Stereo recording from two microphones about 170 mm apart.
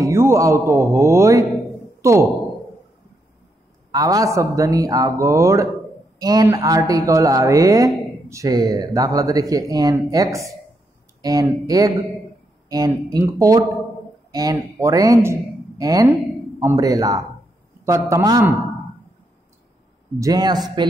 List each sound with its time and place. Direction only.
0.0 s a man's voice: 15° right (ahead or behind)
2.0 s a sound: 15° right (ahead or behind)
3.9 s a man's voice: 20° right (ahead or behind)
20.2 s speech: 20° right (ahead or behind)